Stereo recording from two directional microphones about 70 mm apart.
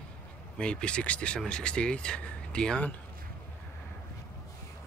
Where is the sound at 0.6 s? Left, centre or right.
Centre.